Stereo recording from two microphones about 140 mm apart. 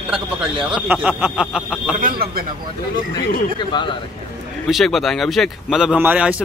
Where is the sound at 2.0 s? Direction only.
90° right.